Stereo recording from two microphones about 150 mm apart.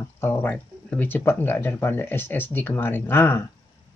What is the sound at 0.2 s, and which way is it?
Speech, 15° left (ahead or behind).